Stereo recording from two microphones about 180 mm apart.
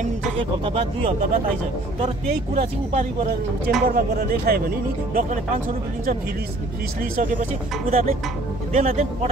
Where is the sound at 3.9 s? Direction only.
55° right (ahead or behind).